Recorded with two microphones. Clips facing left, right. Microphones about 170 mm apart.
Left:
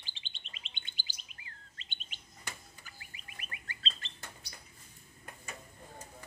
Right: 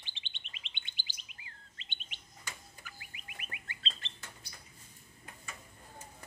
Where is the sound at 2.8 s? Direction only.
35° left (ahead or behind).